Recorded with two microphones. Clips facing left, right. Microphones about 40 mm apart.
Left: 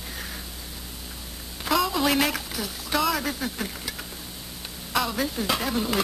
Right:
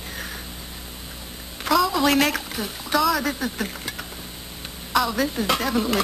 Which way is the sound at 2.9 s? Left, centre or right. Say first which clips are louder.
Right 4 dB; centre.